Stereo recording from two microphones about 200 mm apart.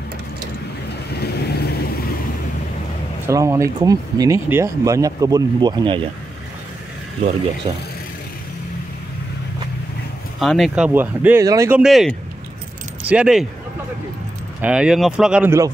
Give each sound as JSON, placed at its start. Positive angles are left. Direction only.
{"t": 1.1, "sound": "vehicle", "side_deg": 55}
{"t": 3.3, "sound": "speech", "side_deg": -15}
{"t": 7.7, "sound": "speech", "side_deg": -25}
{"t": 10.4, "sound": "speech", "side_deg": 0}
{"t": 11.8, "sound": "speech", "side_deg": 0}
{"t": 14.6, "sound": "speech", "side_deg": -5}